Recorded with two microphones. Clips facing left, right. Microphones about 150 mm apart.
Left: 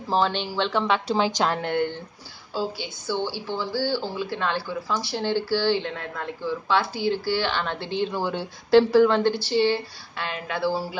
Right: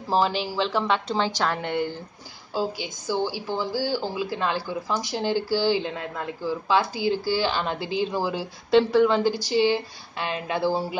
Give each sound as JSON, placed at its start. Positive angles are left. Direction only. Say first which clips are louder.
{"t": 0.1, "sound": "a woman's voice", "louder": "even", "side_deg": -5}
{"t": 1.6, "sound": "a woman's voice", "louder": "left 2 dB", "side_deg": 0}
{"t": 2.5, "sound": "speech", "louder": "right 1 dB", "side_deg": -15}